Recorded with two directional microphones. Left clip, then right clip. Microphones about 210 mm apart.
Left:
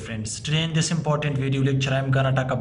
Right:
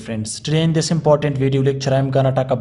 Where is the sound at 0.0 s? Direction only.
20° right (ahead or behind).